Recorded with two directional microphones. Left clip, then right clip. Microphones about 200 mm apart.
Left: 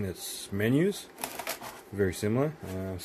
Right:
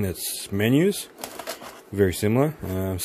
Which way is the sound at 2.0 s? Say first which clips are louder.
Right 7 dB; 35° right (ahead or behind).